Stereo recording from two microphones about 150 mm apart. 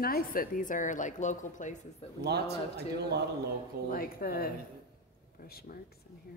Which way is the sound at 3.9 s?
70° left (ahead or behind).